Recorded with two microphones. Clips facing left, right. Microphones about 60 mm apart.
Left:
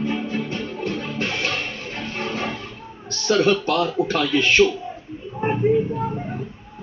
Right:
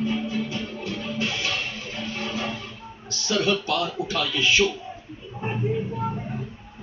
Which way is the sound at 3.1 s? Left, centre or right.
Left.